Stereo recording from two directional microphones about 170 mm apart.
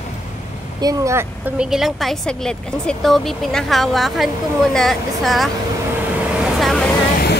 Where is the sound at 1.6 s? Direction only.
Centre (ahead or behind).